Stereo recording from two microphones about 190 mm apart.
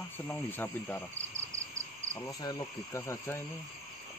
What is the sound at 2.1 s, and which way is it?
Speech, 15° left (ahead or behind).